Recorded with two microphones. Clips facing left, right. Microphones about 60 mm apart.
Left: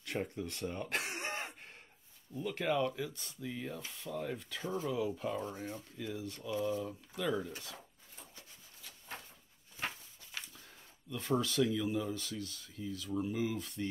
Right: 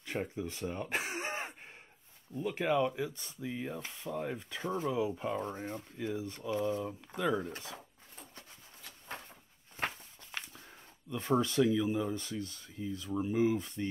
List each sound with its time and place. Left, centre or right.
0.0 s speech: centre
1.0 s throat clearing: centre
2.3 s speech: centre
3.8 s speech: right
4.6 s speech: right
9.8 s walk: right
11.1 s speech: right